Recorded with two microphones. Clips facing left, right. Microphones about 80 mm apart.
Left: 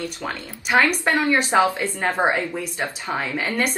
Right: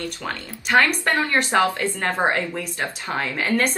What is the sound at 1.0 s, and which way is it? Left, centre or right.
Speech, centre.